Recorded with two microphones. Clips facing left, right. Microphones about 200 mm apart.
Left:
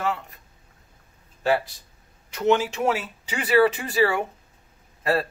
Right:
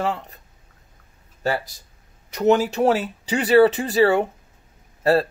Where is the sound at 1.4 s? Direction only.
40° right (ahead or behind).